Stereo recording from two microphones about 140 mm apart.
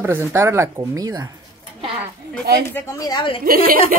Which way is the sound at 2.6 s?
20° left (ahead or behind).